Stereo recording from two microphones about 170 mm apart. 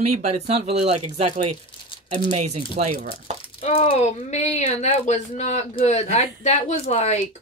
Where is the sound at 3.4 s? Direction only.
35° left (ahead or behind).